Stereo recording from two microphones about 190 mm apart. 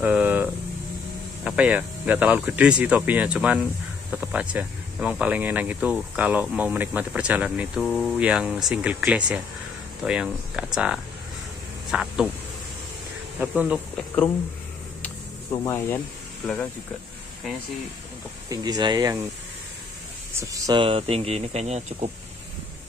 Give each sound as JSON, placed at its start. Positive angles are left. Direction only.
{"t": 0.0, "sound": "a sound", "side_deg": -5}
{"t": 1.4, "sound": "speech", "side_deg": -5}
{"t": 13.4, "sound": "speech", "side_deg": -5}
{"t": 15.5, "sound": "speech", "side_deg": 15}
{"t": 18.5, "sound": "speech", "side_deg": -20}
{"t": 20.3, "sound": "speech", "side_deg": -20}